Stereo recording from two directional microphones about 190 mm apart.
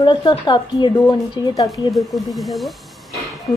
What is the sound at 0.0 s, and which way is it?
Speech, 25° left (ahead or behind).